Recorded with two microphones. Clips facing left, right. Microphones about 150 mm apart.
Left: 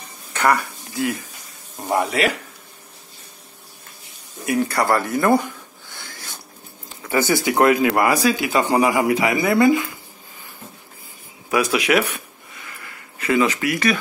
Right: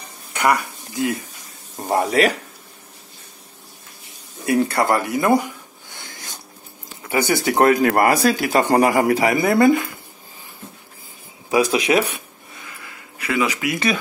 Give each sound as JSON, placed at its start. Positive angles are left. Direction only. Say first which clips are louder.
{"t": 0.3, "sound": "a sound", "louder": "even", "side_deg": -15}
{"t": 1.9, "sound": "speech", "louder": "right 2 dB", "side_deg": -40}
{"t": 4.5, "sound": "a sound", "louder": "right 1 dB", "side_deg": -25}
{"t": 7.5, "sound": "a man's voice", "louder": "right 1 dB", "side_deg": -35}
{"t": 11.5, "sound": "speech", "louder": "right 1 dB", "side_deg": -30}
{"t": 13.2, "sound": "speech", "louder": "left 3 dB", "side_deg": -5}
{"t": 13.7, "sound": "speech", "louder": "left 1 dB", "side_deg": -20}